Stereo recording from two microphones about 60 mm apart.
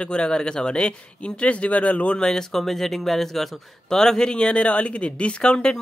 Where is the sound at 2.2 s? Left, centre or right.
Centre.